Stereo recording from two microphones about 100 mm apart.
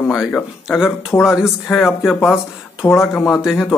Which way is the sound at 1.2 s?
5° right (ahead or behind).